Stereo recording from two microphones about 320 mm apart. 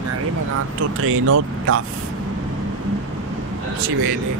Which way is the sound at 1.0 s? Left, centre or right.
Right.